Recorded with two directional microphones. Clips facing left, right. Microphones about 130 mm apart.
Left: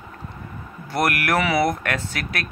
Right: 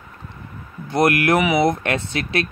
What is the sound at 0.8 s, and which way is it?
Speech, 20° right (ahead or behind).